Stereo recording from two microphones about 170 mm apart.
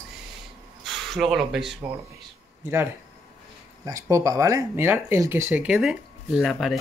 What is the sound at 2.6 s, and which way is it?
Speech, 15° right (ahead or behind).